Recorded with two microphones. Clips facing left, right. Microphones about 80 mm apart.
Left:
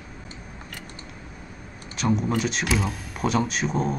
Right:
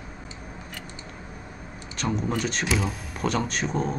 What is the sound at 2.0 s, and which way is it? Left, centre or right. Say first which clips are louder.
Speech: left 3 dB; centre.